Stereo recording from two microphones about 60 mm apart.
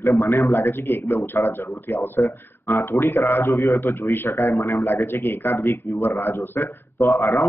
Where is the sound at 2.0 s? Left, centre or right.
Left.